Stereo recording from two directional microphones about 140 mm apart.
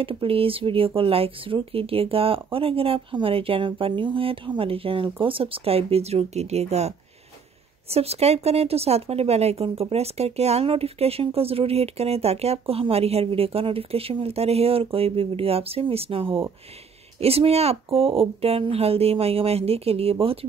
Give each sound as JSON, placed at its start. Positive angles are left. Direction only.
{"t": 0.0, "sound": "speech", "side_deg": -40}
{"t": 7.9, "sound": "speech", "side_deg": -45}